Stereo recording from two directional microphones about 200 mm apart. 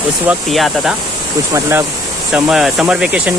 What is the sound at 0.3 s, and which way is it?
Speech, centre (ahead or behind).